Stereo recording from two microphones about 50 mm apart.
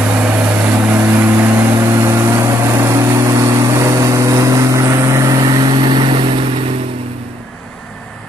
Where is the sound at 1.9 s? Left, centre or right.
Right.